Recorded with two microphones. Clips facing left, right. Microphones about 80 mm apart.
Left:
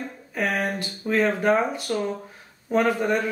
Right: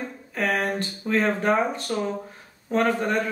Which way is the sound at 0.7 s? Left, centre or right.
Centre.